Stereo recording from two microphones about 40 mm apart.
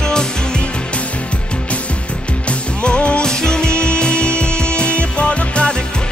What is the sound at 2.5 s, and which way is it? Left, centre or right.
Music, left.